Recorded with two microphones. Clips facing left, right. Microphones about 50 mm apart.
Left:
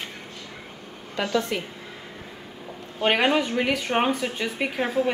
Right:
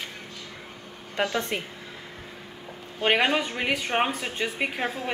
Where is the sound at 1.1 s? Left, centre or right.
Right.